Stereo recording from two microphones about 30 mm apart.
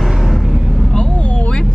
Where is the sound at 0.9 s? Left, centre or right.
Left.